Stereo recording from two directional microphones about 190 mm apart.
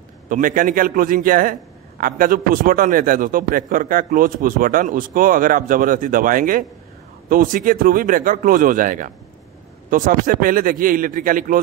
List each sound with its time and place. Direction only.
0.3 s a man's voice: 45° right (ahead or behind)